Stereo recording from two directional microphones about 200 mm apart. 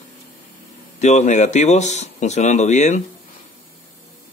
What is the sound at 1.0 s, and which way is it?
Speech, 35° left (ahead or behind).